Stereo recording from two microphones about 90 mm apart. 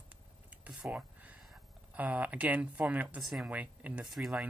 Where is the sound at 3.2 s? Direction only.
Centre (ahead or behind).